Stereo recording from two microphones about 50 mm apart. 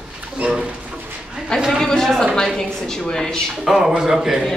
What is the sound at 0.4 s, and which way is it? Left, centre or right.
Speech, centre.